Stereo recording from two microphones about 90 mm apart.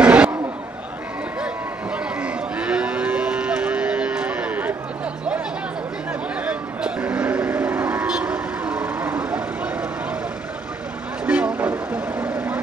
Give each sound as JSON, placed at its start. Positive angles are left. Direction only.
{"t": 0.0, "sound": "a sound", "side_deg": -10}
{"t": 1.4, "sound": "moo", "side_deg": -10}
{"t": 6.4, "sound": "cattle", "side_deg": -15}
{"t": 11.2, "sound": "vehicle", "side_deg": -15}